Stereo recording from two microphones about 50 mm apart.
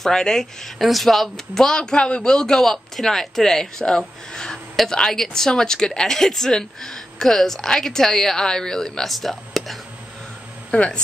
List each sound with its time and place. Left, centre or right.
0.0 s a woman's voice: centre
10.7 s speech: left